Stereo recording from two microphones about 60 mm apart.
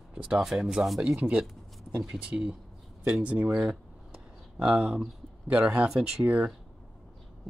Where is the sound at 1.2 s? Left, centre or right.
Centre.